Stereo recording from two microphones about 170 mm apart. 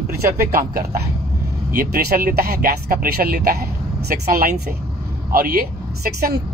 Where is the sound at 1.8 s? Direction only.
60° right (ahead or behind).